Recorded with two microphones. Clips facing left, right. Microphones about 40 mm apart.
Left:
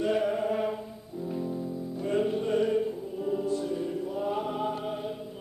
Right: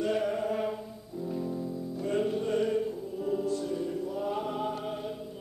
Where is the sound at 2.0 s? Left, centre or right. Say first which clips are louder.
Left 2 dB; centre.